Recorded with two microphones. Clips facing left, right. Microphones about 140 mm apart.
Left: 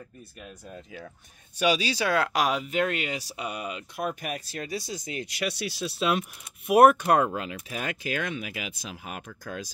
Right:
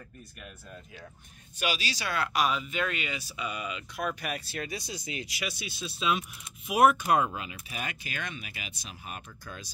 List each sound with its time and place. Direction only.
2.0 s speech: 90° left